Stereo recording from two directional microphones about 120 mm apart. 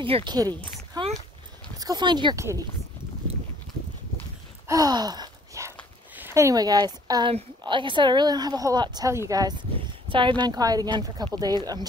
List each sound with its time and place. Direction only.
0.0 s speech: 45° right (ahead or behind)
1.0 s a sound: 35° right (ahead or behind)
1.8 s speech: 35° right (ahead or behind)
4.6 s sigh: 35° right (ahead or behind)
6.1 s speech: 20° right (ahead or behind)